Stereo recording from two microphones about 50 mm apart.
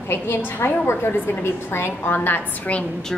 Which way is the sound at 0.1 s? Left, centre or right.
Left.